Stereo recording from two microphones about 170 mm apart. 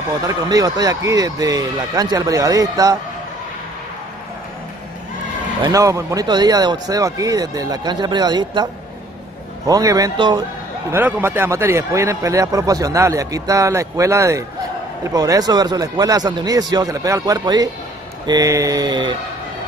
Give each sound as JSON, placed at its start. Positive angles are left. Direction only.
{"t": 0.3, "sound": "speech", "side_deg": -20}
{"t": 5.6, "sound": "speech", "side_deg": -20}
{"t": 9.7, "sound": "speech", "side_deg": -20}
{"t": 10.9, "sound": "a man's voice", "side_deg": -15}